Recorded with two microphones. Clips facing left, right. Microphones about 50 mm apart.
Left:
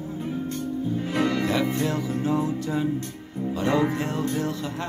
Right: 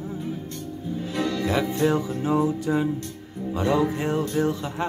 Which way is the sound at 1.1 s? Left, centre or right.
Left.